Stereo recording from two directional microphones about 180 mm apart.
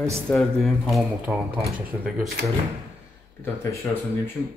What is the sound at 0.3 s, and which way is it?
A man's voice, centre (ahead or behind).